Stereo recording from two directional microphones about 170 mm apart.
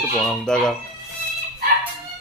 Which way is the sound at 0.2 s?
Centre (ahead or behind).